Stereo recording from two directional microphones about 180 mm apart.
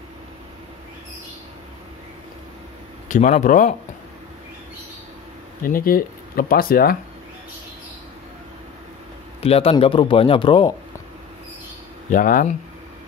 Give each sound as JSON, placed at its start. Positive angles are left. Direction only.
{"t": 3.1, "sound": "speech", "side_deg": 45}
{"t": 5.6, "sound": "speech", "side_deg": 55}
{"t": 9.4, "sound": "a man's voice", "side_deg": 35}
{"t": 12.1, "sound": "speech", "side_deg": 50}